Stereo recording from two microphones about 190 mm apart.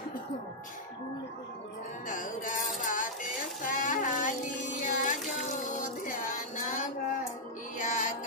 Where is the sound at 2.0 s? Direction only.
45° left (ahead or behind).